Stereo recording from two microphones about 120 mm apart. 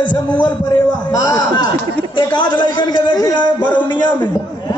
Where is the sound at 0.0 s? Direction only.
40° left (ahead or behind).